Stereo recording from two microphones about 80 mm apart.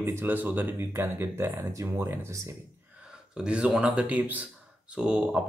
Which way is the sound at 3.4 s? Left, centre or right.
Centre.